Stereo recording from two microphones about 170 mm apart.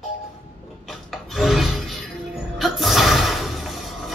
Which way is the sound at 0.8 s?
Centre (ahead or behind).